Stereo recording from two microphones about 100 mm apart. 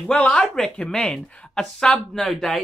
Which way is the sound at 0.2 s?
10° left (ahead or behind).